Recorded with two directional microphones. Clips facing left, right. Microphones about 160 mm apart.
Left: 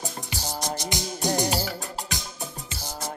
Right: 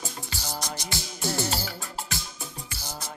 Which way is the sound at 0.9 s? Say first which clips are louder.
Left 5 dB; 15° left (ahead or behind).